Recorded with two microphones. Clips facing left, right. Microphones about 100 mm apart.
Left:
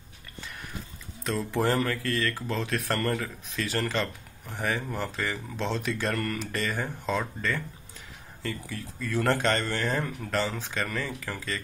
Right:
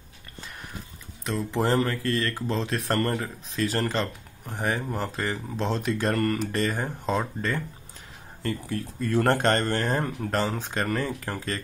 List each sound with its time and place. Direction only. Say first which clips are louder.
1.2 s speech: right 1 dB; 15° right (ahead or behind)
1.6 s mantra: right 2 dB; 30° right (ahead or behind)
2.4 s speech: right 2 dB; 30° right (ahead or behind)